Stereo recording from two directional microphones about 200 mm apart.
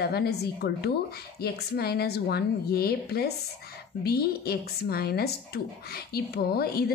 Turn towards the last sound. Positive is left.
turn(degrees=50)  # may be behind; listen again after turning